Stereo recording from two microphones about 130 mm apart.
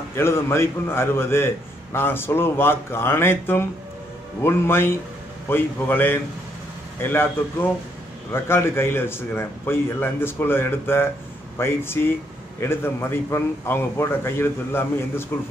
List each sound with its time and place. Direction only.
0.1 s a man's voice: 20° left (ahead or behind)